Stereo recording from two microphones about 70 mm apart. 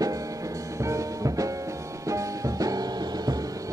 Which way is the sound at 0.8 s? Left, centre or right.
Right.